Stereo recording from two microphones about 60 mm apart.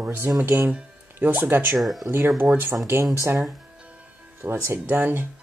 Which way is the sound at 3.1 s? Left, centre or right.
Right.